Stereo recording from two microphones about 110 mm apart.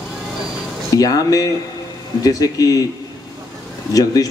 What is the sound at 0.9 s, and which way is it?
A man's voice, 35° left (ahead or behind).